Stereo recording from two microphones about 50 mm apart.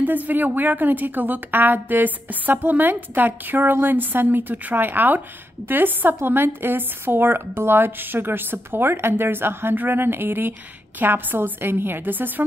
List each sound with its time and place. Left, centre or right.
0.0 s a woman's voice: right